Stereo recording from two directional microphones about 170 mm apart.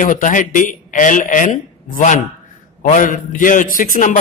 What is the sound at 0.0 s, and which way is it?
A man's voice, 50° left (ahead or behind).